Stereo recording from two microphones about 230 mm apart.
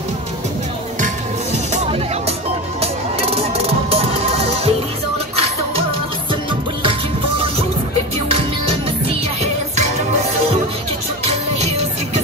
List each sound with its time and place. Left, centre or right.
1.7 s music: right
8.3 s music: right